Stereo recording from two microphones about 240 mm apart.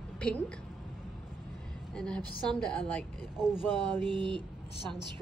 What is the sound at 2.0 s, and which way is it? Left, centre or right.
Speech, centre.